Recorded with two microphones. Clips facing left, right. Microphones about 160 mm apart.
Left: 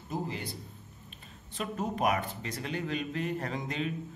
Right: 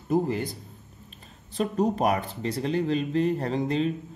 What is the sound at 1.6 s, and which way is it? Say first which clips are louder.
Speech: right 7 dB; 35° right (ahead or behind).